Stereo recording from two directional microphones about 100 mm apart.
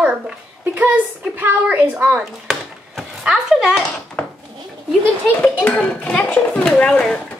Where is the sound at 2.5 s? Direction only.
5° right (ahead or behind).